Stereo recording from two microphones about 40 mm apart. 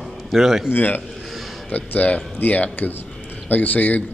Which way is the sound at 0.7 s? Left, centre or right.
Left.